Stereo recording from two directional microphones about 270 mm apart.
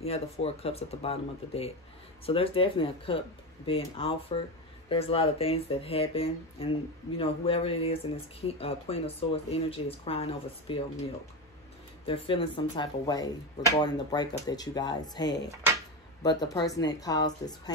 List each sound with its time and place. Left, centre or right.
0.0 s speech: left
12.1 s speech: centre